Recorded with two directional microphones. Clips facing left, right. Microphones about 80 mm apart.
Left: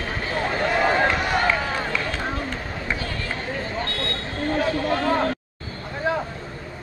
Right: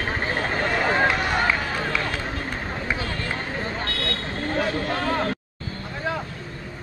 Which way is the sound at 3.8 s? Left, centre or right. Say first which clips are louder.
Even; left.